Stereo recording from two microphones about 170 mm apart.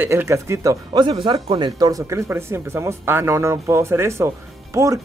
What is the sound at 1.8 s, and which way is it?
Speech, 20° right (ahead or behind).